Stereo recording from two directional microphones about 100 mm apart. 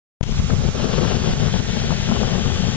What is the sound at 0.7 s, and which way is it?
Vehicle, 15° left (ahead or behind).